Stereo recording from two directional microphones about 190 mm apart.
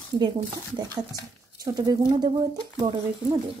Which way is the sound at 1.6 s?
20° right (ahead or behind).